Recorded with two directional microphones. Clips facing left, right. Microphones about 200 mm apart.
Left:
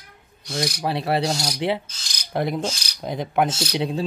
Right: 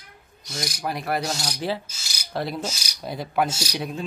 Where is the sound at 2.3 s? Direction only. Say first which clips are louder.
Left 4 dB; 15° left (ahead or behind).